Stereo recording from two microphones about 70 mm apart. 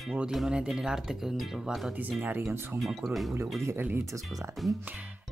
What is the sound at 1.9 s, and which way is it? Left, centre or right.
Speech, centre.